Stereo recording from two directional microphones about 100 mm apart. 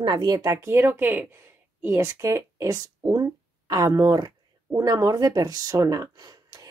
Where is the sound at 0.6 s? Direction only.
25° right (ahead or behind).